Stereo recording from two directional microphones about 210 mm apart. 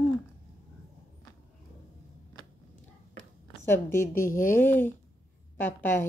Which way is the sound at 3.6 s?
10° left (ahead or behind).